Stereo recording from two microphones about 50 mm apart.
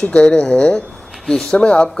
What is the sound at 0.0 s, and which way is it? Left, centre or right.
Speech, left.